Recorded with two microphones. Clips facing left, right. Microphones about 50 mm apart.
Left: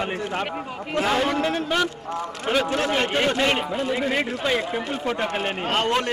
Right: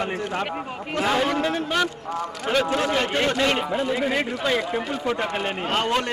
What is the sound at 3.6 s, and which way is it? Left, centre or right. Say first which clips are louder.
Speech: right 1 dB; centre.